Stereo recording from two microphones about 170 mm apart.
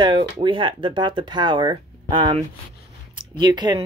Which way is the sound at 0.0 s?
25° right (ahead or behind).